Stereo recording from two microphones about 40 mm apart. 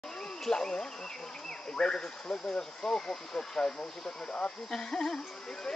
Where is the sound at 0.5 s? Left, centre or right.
Centre.